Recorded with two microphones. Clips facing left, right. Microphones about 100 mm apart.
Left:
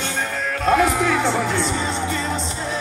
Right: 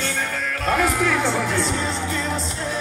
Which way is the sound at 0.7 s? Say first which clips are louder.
Left 3 dB; centre (ahead or behind).